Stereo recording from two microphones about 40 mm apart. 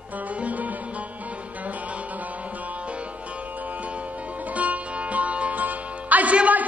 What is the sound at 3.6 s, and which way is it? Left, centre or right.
Music, right.